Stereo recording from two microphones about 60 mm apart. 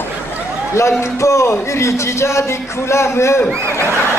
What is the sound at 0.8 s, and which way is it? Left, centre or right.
A man's voice, left.